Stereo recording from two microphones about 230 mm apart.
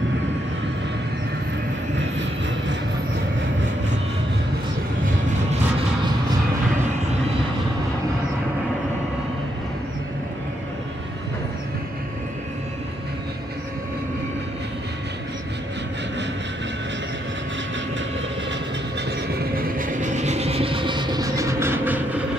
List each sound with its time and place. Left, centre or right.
19.0 s vehicle: right; by 22.2 s centre